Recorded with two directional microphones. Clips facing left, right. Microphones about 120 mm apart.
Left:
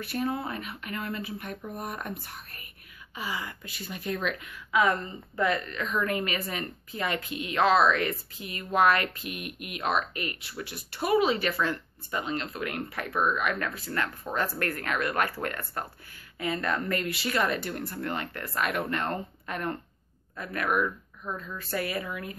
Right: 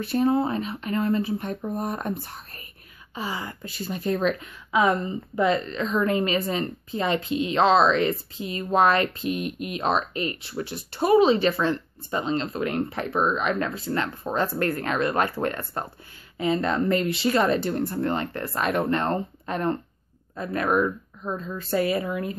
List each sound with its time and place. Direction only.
0.0 s speech: 30° right (ahead or behind)
4.8 s speech: 20° right (ahead or behind)